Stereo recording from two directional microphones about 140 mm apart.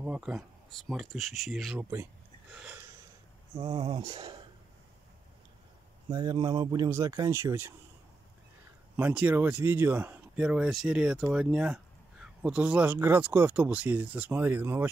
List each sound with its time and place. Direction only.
0.0 s speech: 10° right (ahead or behind)
2.5 s a sound: 10° right (ahead or behind)
3.5 s speech: 30° right (ahead or behind)
6.0 s speech: 30° right (ahead or behind)
8.9 s speech: 10° right (ahead or behind)